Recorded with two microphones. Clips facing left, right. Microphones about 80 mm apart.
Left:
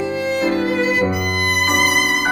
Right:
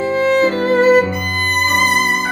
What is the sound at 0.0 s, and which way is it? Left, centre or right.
Music, right.